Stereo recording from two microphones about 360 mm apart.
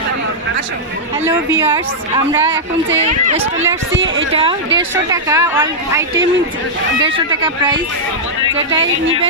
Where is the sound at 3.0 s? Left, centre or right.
Centre.